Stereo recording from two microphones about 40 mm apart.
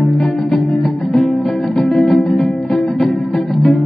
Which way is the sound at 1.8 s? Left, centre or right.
Centre.